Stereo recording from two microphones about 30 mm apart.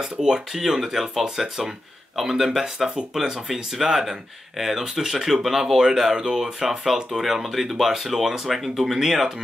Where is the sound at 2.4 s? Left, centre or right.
Centre.